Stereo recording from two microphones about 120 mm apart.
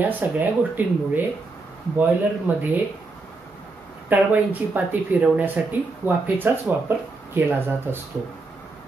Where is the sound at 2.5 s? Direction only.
15° right (ahead or behind).